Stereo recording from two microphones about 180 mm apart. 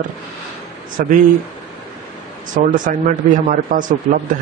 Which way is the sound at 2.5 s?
50° right (ahead or behind).